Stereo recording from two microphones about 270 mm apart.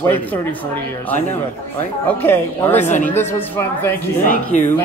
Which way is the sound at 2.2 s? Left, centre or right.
Centre.